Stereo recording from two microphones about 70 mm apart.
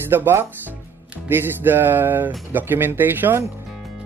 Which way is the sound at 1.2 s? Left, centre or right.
Right.